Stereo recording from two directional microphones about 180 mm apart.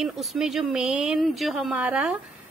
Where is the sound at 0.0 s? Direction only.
Centre (ahead or behind).